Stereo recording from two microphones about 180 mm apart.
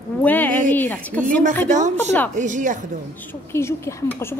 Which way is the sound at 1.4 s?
45° right (ahead or behind).